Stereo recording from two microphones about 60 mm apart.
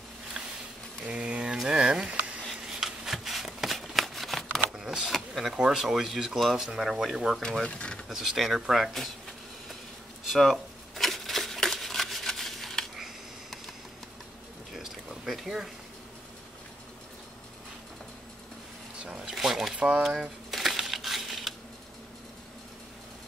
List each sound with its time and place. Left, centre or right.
1.0 s a sound: centre
2.7 s shuffling cards: centre
4.6 s power windows: centre
5.6 s speech: centre
7.6 s speech: centre
8.1 s speech: centre
10.3 s shuffling cards: centre
14.7 s a sound: centre
19.0 s a sound: centre
19.3 s crumpling: centre